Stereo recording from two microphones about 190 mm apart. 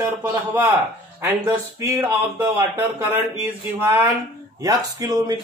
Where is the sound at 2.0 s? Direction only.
10° right (ahead or behind).